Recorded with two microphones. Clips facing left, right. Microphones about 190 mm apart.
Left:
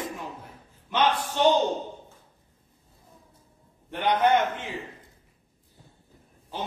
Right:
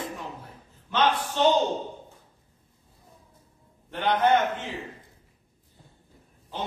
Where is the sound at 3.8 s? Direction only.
15° left (ahead or behind).